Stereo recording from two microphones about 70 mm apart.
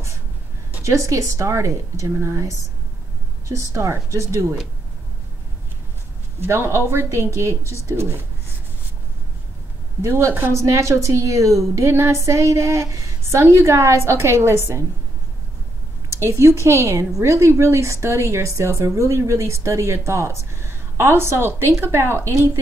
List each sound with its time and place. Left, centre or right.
0.8 s a woman's voice: right
6.4 s a woman's voice: right
10.0 s a woman's voice: right
16.1 s a woman's voice: right